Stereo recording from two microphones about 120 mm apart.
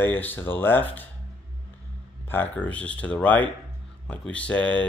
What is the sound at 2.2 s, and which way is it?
Speech, 15° left (ahead or behind).